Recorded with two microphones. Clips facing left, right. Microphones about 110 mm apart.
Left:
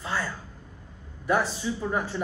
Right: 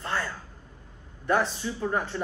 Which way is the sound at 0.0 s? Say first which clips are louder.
Even; 5° left (ahead or behind).